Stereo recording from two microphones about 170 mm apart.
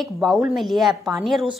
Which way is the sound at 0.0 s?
Centre (ahead or behind).